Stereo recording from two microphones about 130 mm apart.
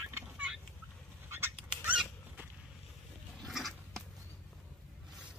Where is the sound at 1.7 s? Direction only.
10° right (ahead or behind).